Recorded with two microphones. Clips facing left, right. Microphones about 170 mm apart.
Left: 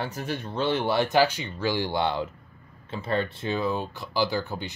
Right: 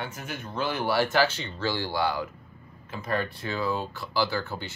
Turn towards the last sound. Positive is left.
turn(degrees=15)  # may be behind; listen again after turning